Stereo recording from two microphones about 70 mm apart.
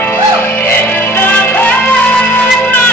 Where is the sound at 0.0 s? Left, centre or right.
Left.